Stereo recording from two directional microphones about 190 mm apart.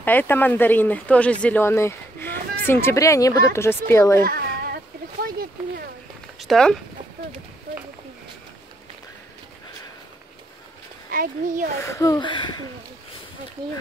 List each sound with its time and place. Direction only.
0.0 s speech: 10° left (ahead or behind)
4.2 s a sound: 50° right (ahead or behind)
6.4 s speech: centre (ahead or behind)
11.1 s a child's voice: 45° right (ahead or behind)
11.8 s speech: 15° left (ahead or behind)